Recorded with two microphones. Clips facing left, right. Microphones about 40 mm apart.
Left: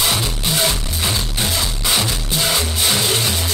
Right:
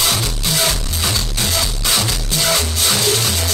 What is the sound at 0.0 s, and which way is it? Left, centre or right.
Music, left.